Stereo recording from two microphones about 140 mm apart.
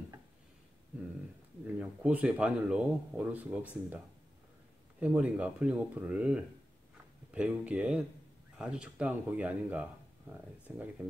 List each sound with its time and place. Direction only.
1.8 s speech: 10° right (ahead or behind)
5.0 s speech: 10° right (ahead or behind)